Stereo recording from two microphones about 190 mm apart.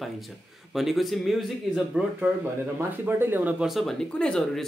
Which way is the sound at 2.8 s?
10° right (ahead or behind).